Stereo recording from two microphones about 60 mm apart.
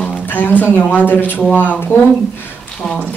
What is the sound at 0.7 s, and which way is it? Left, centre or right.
Speech, left.